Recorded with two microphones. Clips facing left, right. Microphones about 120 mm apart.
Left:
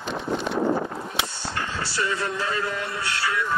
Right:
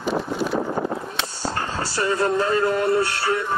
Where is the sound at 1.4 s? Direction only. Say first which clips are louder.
Right 4 dB; 40° right (ahead or behind).